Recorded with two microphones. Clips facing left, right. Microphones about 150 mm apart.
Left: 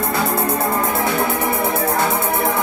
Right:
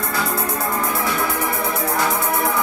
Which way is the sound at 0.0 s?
25° left (ahead or behind).